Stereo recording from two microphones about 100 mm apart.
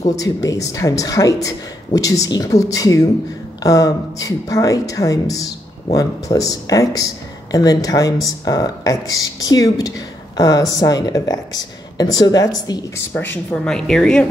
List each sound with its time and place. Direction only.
0.1 s speech: 35° left (ahead or behind)
12.9 s speech: 20° left (ahead or behind)
13.7 s speech: 5° left (ahead or behind)